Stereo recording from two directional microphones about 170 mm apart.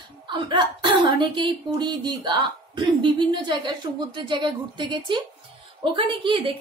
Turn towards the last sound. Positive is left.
turn(degrees=-30)  # may be behind; listen again after turning